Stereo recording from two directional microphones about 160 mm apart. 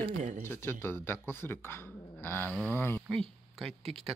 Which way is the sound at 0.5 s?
15° left (ahead or behind).